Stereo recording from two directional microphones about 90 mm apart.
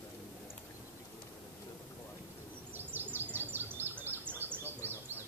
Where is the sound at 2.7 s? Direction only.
20° right (ahead or behind).